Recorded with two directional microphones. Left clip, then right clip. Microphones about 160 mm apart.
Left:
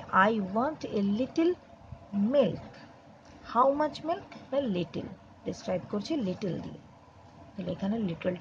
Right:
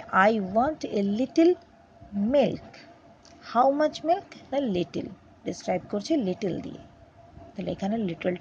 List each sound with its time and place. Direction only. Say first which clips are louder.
0.1 s a woman's voice: right 4 dB; 20° right (ahead or behind)
7.5 s a woman's voice: right 4 dB; 25° right (ahead or behind)